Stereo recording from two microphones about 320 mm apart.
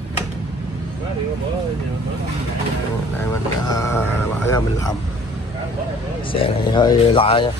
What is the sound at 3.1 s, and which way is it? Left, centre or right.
Speech, centre.